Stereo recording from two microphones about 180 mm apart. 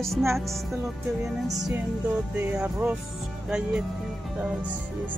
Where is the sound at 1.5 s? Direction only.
20° right (ahead or behind).